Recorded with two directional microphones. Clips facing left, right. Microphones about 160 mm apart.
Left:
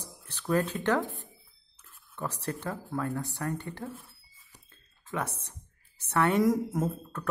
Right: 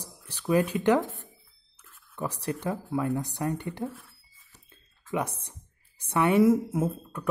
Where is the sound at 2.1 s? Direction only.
15° right (ahead or behind).